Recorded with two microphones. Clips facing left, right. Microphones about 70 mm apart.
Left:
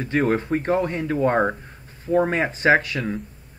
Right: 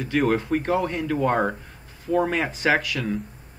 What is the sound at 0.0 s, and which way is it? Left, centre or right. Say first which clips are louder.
Speech: left 1 dB; left.